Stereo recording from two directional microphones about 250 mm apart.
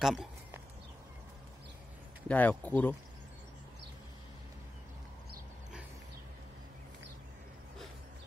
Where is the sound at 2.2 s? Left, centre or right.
Centre.